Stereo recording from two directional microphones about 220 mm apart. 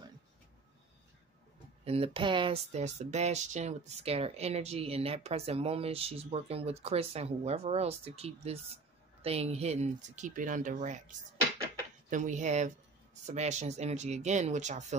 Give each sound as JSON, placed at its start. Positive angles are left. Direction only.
{"t": 1.9, "sound": "speech", "side_deg": -25}